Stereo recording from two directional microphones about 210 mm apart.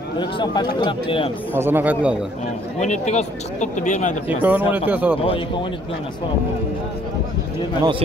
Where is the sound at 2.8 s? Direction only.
35° left (ahead or behind).